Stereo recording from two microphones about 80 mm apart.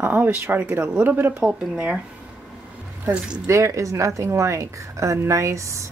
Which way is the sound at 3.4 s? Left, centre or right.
Right.